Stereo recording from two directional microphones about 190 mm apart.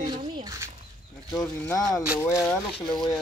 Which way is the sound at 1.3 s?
20° left (ahead or behind).